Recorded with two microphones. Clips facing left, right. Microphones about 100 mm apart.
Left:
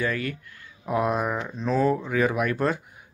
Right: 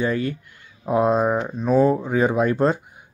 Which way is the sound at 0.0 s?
25° right (ahead or behind).